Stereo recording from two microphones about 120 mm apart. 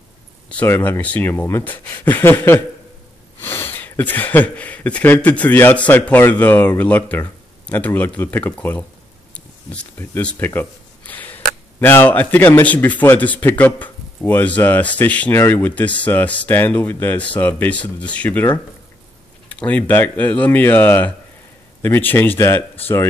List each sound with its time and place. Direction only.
0.5 s speech: 15° left (ahead or behind)